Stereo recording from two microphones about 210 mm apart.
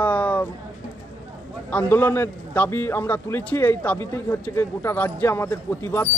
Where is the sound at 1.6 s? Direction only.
10° left (ahead or behind).